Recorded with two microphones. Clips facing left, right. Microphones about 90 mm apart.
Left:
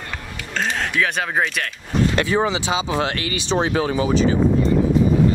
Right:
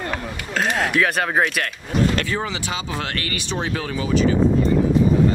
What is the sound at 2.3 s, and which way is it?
Speech, 25° left (ahead or behind).